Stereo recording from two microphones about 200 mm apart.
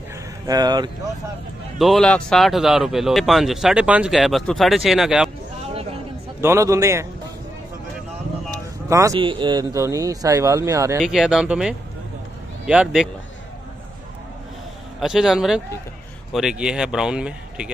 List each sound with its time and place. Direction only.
0.5 s speech: 20° right (ahead or behind)
1.8 s speech: centre (ahead or behind)
6.4 s speech: 15° right (ahead or behind)
8.5 s speech: 15° right (ahead or behind)
11.0 s speech: centre (ahead or behind)
15.0 s speech: centre (ahead or behind)